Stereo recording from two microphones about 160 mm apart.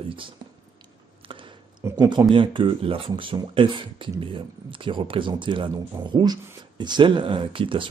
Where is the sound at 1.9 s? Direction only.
25° right (ahead or behind).